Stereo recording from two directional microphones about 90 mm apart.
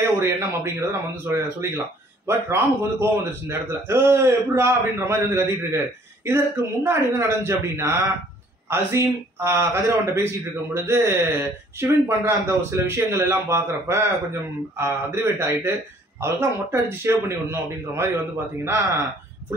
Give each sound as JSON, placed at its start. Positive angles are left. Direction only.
{"t": 0.0, "sound": "a man's voice", "side_deg": -30}